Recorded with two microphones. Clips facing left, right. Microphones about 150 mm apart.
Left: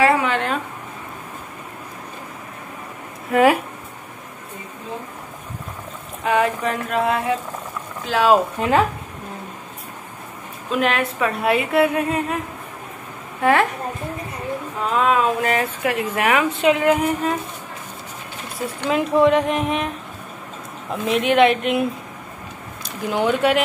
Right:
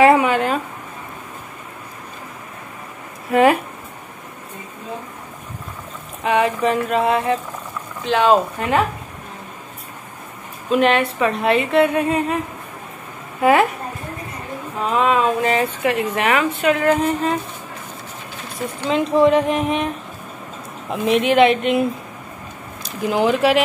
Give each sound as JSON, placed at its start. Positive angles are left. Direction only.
{"t": 0.0, "sound": "a sound", "side_deg": -15}
{"t": 3.3, "sound": "speech", "side_deg": 0}
{"t": 6.2, "sound": "a woman's voice", "side_deg": 0}
{"t": 8.5, "sound": "speech", "side_deg": 25}
{"t": 10.7, "sound": "a woman's voice", "side_deg": 0}
{"t": 13.4, "sound": "a woman's voice", "side_deg": -10}
{"t": 14.9, "sound": "a woman's voice", "side_deg": 0}
{"t": 18.9, "sound": "a woman's voice", "side_deg": 5}
{"t": 20.9, "sound": "a woman's voice", "side_deg": 0}
{"t": 22.8, "sound": "a woman's voice", "side_deg": 0}